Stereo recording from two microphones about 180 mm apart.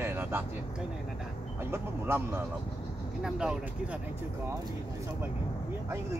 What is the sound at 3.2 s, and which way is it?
Speech, 5° right (ahead or behind).